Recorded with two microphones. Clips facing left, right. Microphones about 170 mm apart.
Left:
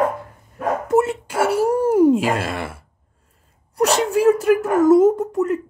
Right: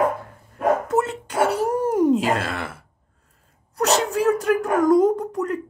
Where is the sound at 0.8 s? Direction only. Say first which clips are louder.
Left 5 dB; 10° left (ahead or behind).